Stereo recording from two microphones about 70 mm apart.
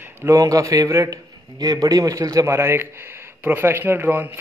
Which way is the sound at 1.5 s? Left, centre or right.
Right.